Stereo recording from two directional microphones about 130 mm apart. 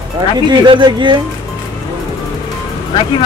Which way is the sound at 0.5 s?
35° right (ahead or behind).